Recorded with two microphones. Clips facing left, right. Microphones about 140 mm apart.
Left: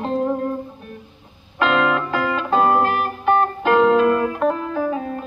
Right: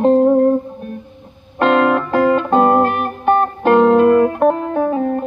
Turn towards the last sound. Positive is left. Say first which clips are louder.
# right 6 dB
turn(degrees=-50)  # may be behind; listen again after turning